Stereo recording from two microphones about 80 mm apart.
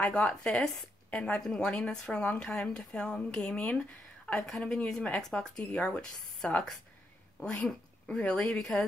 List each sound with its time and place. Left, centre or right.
0.0 s a woman's voice: centre